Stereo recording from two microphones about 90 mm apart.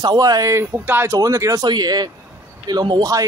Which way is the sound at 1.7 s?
50° right (ahead or behind).